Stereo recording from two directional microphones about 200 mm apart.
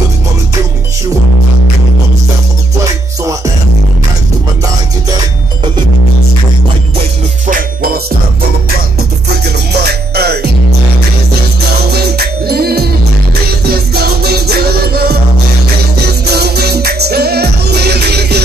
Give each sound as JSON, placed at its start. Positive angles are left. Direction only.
{"t": 7.4, "sound": "music", "side_deg": -45}
{"t": 9.7, "sound": "music", "side_deg": -55}
{"t": 11.9, "sound": "music", "side_deg": -50}
{"t": 16.3, "sound": "music", "side_deg": -55}